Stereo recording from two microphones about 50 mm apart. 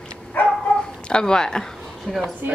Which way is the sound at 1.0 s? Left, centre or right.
Centre.